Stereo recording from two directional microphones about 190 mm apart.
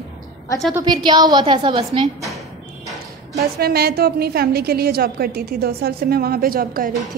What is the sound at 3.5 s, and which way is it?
A woman's voice, 55° right (ahead or behind).